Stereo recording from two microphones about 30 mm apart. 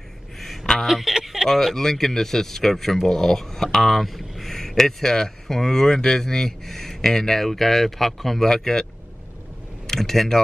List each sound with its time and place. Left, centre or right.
0.8 s speech: centre
1.2 s a sound: centre
1.5 s a man's voice: centre
9.8 s speech: centre